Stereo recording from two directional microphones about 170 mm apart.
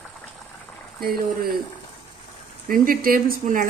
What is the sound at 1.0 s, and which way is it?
Speech, 60° right (ahead or behind).